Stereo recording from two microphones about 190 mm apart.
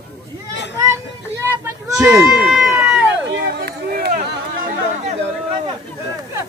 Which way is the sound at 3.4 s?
55° right (ahead or behind).